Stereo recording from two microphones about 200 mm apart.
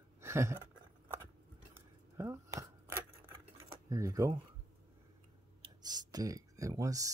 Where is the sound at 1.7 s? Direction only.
15° right (ahead or behind).